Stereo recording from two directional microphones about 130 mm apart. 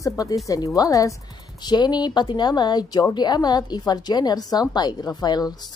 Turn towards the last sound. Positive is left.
turn(degrees=30)  # may be behind; listen again after turning